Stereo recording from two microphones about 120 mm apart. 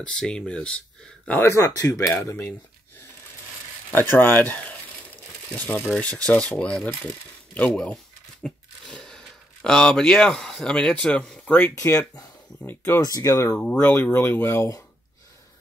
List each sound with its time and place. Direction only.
0.0 s speech: 5° left (ahead or behind)
1.4 s speech: 25° left (ahead or behind)
3.9 s speech: 20° left (ahead or behind)
5.6 s speech: 15° left (ahead or behind)
13.0 s speech: 30° left (ahead or behind)
13.6 s speech: 15° left (ahead or behind)